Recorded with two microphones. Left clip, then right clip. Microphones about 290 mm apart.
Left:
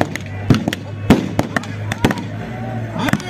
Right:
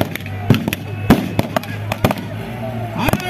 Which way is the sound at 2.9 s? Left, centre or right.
Right.